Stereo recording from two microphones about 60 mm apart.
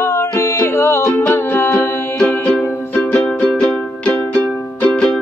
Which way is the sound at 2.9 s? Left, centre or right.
Left.